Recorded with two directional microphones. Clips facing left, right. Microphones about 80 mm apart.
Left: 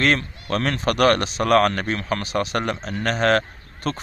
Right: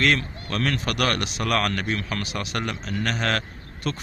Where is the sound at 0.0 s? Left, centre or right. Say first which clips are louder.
Left 2 dB; left.